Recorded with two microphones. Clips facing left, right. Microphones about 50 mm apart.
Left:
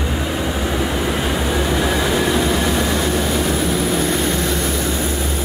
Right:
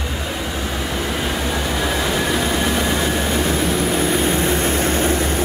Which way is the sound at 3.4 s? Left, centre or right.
Centre.